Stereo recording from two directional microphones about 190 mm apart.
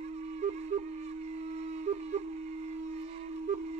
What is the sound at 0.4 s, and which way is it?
Music, 35° right (ahead or behind).